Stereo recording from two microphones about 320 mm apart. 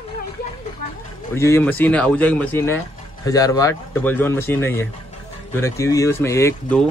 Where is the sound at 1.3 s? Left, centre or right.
Centre.